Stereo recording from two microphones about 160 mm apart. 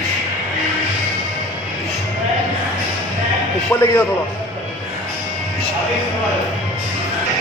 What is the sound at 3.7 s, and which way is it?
Speech, 15° left (ahead or behind).